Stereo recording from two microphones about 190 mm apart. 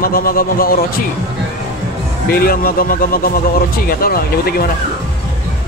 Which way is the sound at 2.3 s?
50° left (ahead or behind).